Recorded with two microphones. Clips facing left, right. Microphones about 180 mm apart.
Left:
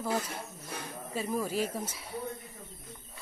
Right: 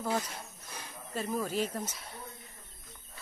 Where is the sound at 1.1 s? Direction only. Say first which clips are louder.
Left 1 dB; 5° left (ahead or behind).